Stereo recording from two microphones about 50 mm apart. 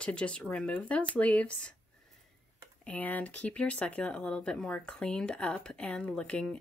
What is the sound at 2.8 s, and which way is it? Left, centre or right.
Speech, left.